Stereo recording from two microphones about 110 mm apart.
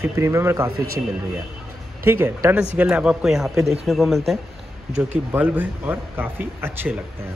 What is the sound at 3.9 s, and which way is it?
Speech, 5° left (ahead or behind).